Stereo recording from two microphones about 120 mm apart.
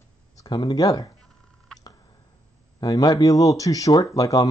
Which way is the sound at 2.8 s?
30° left (ahead or behind).